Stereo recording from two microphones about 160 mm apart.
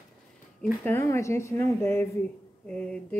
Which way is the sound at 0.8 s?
15° left (ahead or behind).